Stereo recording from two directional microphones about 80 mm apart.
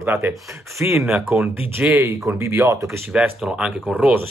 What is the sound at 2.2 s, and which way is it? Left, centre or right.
Speech, right.